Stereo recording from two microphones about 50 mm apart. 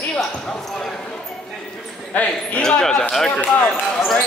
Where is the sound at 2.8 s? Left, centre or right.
Centre.